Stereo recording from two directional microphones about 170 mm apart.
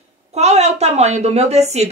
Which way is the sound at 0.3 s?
40° right (ahead or behind).